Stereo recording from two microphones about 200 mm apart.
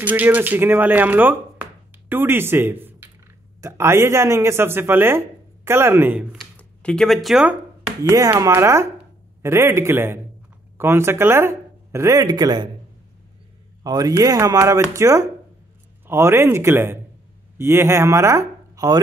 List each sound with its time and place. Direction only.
0.0 s speech: 10° right (ahead or behind)
6.5 s speech: 5° left (ahead or behind)
8.0 s speech: 15° right (ahead or behind)
13.8 s speech: 20° right (ahead or behind)